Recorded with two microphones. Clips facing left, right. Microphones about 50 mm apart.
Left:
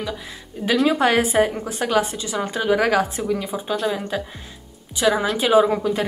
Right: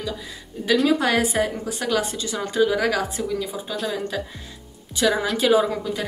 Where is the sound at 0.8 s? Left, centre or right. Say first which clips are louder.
Left 2 dB; left.